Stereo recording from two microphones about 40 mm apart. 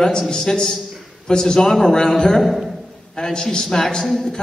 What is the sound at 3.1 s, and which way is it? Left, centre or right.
Speech, centre.